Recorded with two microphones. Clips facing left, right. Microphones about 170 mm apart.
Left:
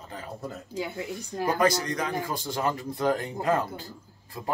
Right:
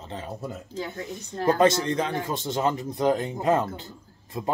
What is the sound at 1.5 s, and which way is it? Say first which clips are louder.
A man's voice: right 4 dB; 25° right (ahead or behind).